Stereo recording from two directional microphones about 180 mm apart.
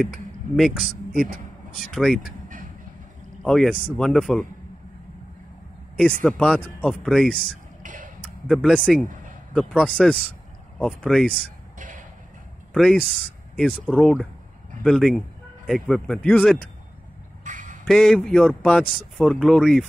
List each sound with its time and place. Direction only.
0.0 s speech: centre (ahead or behind)
3.4 s speech: 5° left (ahead or behind)
6.2 s speech: 5° left (ahead or behind)
7.8 s a sound: 50° right (ahead or behind)
8.5 s speech: centre (ahead or behind)
12.7 s speech: centre (ahead or behind)
17.4 s a sound: 45° right (ahead or behind)
17.8 s speech: centre (ahead or behind)